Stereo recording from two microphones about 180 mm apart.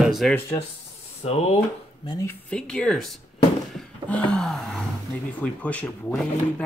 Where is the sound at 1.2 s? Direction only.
35° left (ahead or behind).